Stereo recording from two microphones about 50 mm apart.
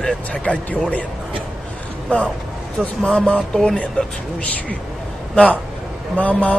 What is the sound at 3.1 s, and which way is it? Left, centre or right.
Speech, left.